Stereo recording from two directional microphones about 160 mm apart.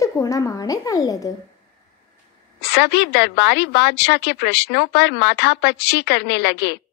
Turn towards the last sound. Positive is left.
turn(degrees=90)